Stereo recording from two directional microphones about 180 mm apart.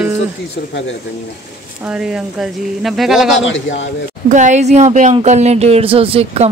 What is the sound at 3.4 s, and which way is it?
Speech, 90° left.